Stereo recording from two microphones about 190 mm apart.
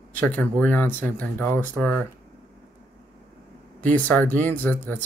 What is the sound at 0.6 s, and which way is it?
Speech, 10° left (ahead or behind).